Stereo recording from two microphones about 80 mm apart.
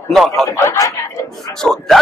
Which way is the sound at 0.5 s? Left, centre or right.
Left.